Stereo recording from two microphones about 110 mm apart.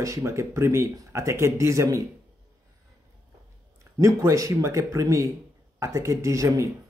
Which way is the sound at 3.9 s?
30° right (ahead or behind).